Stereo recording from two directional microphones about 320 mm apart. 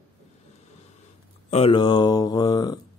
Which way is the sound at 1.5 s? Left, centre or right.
Centre.